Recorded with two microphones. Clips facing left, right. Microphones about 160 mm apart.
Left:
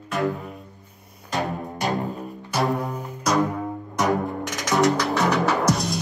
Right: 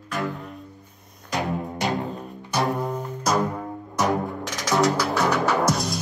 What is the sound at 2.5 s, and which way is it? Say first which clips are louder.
Music: even; centre (ahead or behind).